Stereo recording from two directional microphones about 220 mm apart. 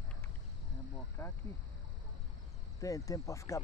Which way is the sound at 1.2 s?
10° left (ahead or behind).